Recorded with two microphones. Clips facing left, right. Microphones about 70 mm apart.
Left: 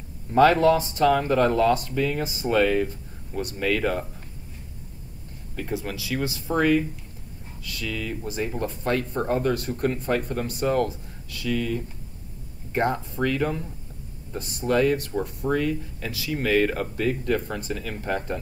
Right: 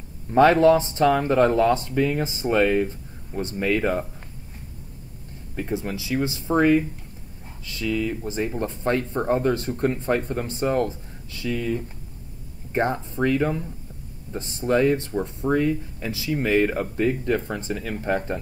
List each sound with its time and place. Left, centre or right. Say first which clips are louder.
0.3 s speech: right 2 dB; right
5.6 s speech: right 2 dB; right